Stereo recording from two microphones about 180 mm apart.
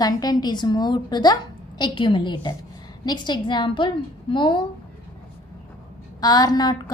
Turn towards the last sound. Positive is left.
turn(degrees=20)  # may be behind; listen again after turning